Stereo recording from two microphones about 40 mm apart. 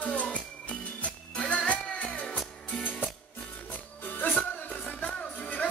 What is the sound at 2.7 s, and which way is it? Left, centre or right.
Music, left.